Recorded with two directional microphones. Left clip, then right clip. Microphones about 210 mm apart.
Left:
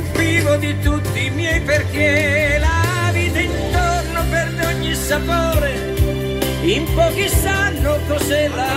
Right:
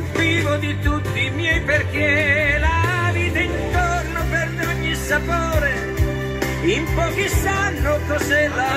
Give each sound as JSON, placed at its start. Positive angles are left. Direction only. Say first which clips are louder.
{"t": 0.2, "sound": "music", "louder": "left 3 dB", "side_deg": 50}